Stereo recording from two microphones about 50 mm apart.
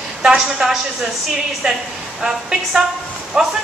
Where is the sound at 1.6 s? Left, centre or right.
Centre.